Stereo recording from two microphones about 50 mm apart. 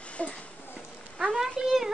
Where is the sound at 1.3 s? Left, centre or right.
Centre.